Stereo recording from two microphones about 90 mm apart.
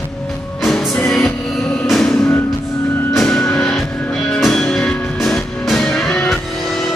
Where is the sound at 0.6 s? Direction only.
5° left (ahead or behind).